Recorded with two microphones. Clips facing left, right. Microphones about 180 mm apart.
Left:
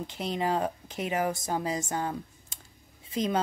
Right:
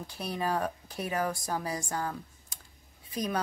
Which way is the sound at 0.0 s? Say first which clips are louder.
Left 3 dB; 20° left (ahead or behind).